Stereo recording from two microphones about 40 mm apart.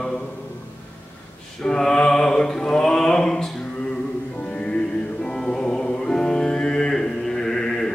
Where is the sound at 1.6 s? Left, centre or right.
Centre.